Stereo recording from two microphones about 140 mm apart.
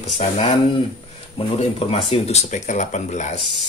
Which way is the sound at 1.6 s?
45° left (ahead or behind).